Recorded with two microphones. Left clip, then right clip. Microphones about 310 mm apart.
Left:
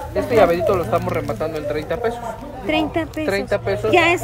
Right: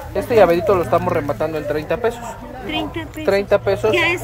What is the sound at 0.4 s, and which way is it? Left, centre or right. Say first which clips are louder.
Speech: right 2 dB; right.